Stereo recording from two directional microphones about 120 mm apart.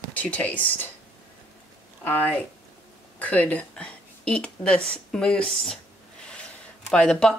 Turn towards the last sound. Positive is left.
turn(degrees=5)  # may be behind; listen again after turning